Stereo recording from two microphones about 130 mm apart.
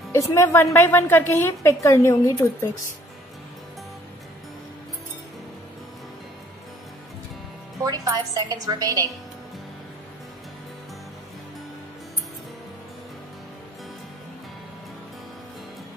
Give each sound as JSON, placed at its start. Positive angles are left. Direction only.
{"t": 0.1, "sound": "a woman's voice", "side_deg": 25}
{"t": 7.8, "sound": "a woman's voice", "side_deg": -25}